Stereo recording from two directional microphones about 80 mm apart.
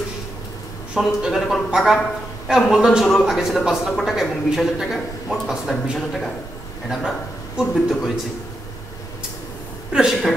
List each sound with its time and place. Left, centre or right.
0.9 s a man's voice: centre
9.9 s a woman's voice: centre